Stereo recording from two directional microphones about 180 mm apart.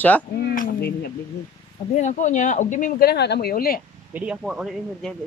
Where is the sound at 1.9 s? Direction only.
40° left (ahead or behind).